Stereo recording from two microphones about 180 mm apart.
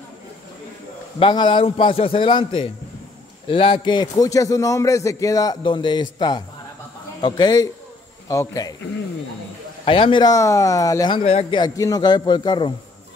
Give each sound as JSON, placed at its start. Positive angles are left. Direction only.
{"t": 1.2, "sound": "a man's voice", "side_deg": 25}
{"t": 9.8, "sound": "a man's voice", "side_deg": 30}